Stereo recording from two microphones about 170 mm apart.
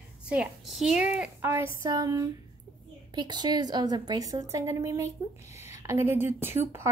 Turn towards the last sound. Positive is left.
turn(degrees=-15)  # may be behind; listen again after turning